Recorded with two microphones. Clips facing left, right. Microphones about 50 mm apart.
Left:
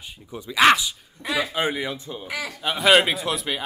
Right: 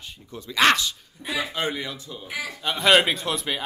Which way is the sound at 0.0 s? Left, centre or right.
Centre.